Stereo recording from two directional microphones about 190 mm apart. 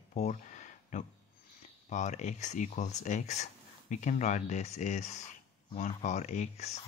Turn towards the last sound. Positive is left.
turn(degrees=35)  # may be behind; listen again after turning